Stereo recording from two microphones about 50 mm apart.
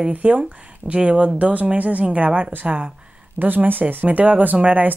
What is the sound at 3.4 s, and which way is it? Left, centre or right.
Speech, right.